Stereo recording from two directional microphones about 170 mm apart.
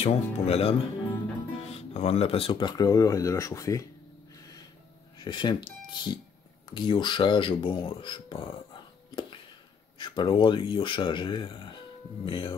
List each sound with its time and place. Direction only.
0.0 s speech: 35° left (ahead or behind); by 3.8 s 20° left (ahead or behind)
5.2 s speech: 25° left (ahead or behind)
9.9 s speech: 25° left (ahead or behind)